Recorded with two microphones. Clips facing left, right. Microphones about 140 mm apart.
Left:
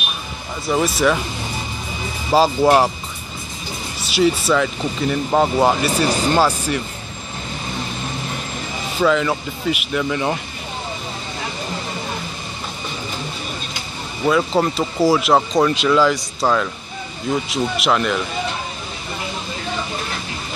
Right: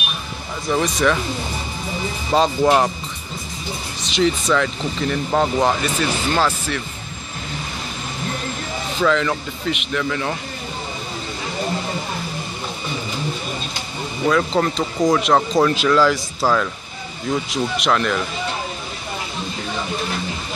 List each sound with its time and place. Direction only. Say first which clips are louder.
0.7 s speech: left 1 dB; 5° left (ahead or behind)
2.3 s speech: left 2 dB; 5° left (ahead or behind)
4.0 s speech: left 2 dB; 5° left (ahead or behind)
9.0 s speech: left 2 dB; 10° left (ahead or behind)
10.0 s speech: left 4 dB; 20° left (ahead or behind)
14.2 s speech: left 1 dB; 10° left (ahead or behind)